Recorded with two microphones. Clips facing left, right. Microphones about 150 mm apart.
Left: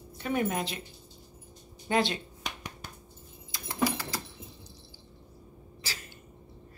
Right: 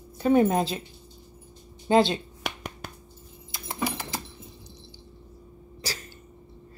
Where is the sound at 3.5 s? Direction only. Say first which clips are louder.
Left 1 dB; 25° right (ahead or behind).